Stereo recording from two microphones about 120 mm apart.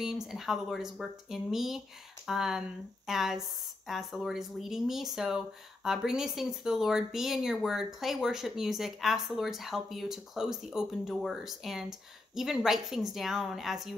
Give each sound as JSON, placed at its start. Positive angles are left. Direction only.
{"t": 0.0, "sound": "speech", "side_deg": 0}